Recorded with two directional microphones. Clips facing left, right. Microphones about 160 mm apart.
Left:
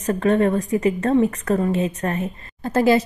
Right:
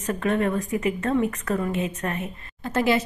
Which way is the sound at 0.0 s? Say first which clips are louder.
Left 6 dB; 35° left (ahead or behind).